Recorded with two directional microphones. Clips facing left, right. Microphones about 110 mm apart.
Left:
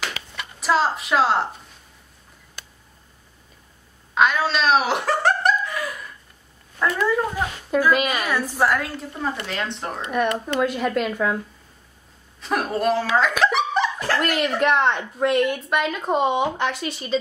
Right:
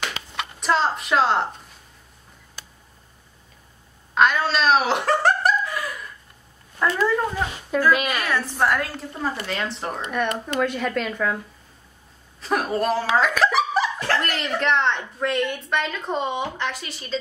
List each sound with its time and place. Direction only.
0.6 s a woman's voice: centre (ahead or behind)
4.1 s a sound: centre (ahead or behind)
6.8 s speech: centre (ahead or behind)
7.3 s speech: 10° left (ahead or behind)
8.6 s speech: centre (ahead or behind)
12.4 s speech: centre (ahead or behind)
13.4 s a sound: centre (ahead or behind)
13.9 s speech: 10° left (ahead or behind)